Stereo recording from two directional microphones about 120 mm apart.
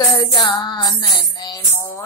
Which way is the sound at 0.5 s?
40° left (ahead or behind).